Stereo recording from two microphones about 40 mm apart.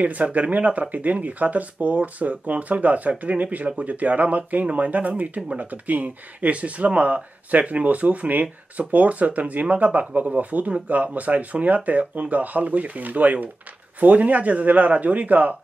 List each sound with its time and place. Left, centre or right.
0.0 s speech: right